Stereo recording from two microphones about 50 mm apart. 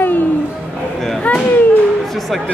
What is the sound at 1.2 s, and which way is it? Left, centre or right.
Speech, left.